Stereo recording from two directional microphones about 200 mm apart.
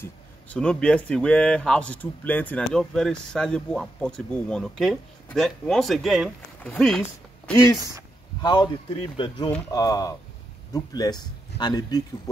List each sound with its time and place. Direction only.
0.0 s speech: 5° left (ahead or behind)